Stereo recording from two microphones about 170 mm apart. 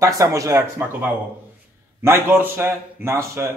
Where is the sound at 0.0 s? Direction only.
20° right (ahead or behind).